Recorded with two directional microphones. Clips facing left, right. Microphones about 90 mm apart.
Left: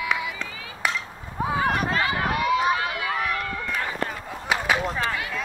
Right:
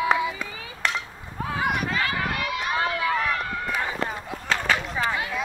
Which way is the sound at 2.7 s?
30° right (ahead or behind).